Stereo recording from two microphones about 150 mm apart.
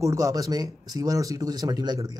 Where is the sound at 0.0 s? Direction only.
20° right (ahead or behind).